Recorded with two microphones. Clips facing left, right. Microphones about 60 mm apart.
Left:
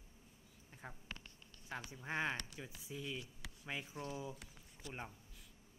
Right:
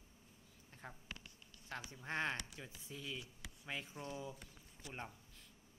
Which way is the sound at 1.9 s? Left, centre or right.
Centre.